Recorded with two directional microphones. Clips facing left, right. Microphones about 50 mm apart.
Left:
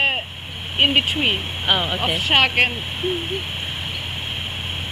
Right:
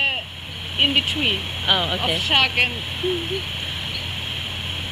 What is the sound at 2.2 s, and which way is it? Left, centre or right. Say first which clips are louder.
Speech: left 3 dB; left.